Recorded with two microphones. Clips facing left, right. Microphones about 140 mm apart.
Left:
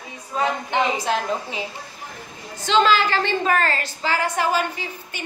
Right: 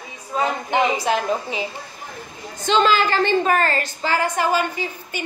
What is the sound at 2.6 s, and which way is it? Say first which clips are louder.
A woman's voice: even; 45° right (ahead or behind).